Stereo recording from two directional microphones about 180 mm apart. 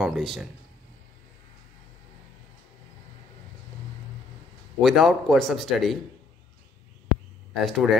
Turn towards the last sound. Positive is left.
turn(degrees=0)  # may be behind; listen again after turning